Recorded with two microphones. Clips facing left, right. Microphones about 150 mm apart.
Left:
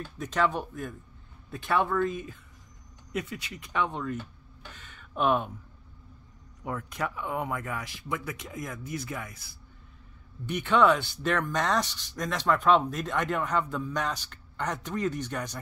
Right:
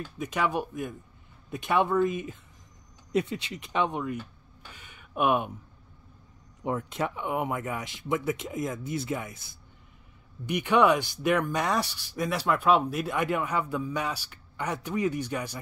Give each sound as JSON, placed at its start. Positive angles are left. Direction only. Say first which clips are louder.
{"t": 0.2, "sound": "speech", "louder": "left 1 dB", "side_deg": -10}
{"t": 6.6, "sound": "speech", "louder": "right 3 dB", "side_deg": -25}